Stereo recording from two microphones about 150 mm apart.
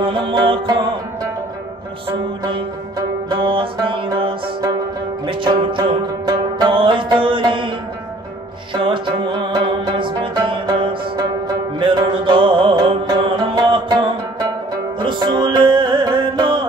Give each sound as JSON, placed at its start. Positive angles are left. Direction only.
{"t": 0.0, "sound": "music", "side_deg": -30}
{"t": 2.0, "sound": "music", "side_deg": -30}
{"t": 8.7, "sound": "music", "side_deg": -30}